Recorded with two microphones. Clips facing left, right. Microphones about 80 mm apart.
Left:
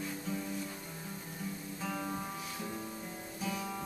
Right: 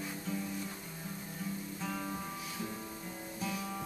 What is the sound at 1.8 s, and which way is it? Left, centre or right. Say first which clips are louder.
Music: left 2 dB; centre.